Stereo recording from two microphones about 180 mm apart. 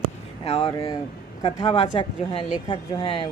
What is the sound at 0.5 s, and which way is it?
Speech, 30° left (ahead or behind).